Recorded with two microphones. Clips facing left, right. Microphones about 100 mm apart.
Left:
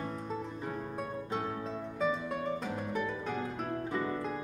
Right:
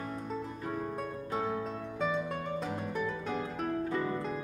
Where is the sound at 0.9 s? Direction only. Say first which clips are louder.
Right 1 dB; centre (ahead or behind).